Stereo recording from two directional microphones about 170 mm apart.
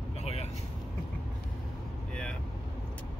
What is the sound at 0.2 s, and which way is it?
Vehicle, 40° left (ahead or behind).